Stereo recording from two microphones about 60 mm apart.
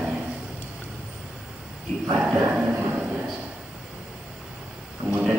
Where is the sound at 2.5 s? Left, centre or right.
Right.